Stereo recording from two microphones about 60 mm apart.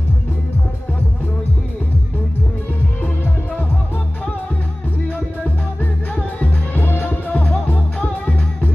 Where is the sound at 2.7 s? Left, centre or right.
Left.